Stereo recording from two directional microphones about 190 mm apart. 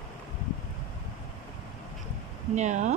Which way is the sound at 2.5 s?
40° right (ahead or behind).